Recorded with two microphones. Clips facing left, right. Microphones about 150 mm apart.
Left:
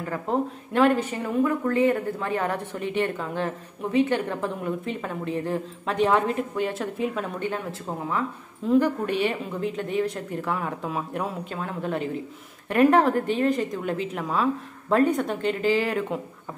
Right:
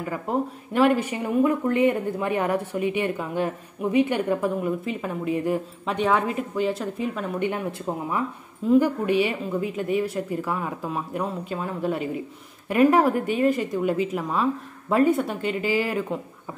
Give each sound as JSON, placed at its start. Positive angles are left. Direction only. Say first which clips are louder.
{"t": 0.3, "sound": "a woman's voice", "louder": "left 1 dB", "side_deg": -5}
{"t": 5.9, "sound": "a woman's voice", "louder": "left 1 dB", "side_deg": 0}
{"t": 7.3, "sound": "speech", "louder": "right 3 dB", "side_deg": -15}
{"t": 8.6, "sound": "a woman's voice", "louder": "right 2 dB", "side_deg": -10}